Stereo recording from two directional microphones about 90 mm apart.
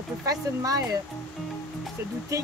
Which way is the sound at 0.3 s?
40° right (ahead or behind).